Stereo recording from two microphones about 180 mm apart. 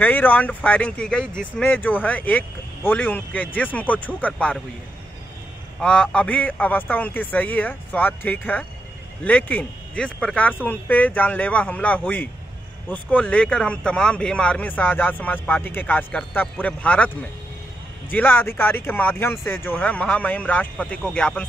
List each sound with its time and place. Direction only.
0.0 s speech: 10° left (ahead or behind)
5.8 s speech: 5° left (ahead or behind)
18.1 s speech: 10° left (ahead or behind)